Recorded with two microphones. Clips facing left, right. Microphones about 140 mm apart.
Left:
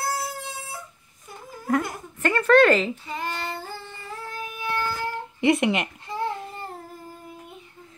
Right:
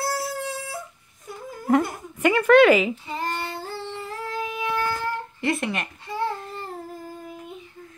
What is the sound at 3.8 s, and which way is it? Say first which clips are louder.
Child singing: right 5 dB; 90° right.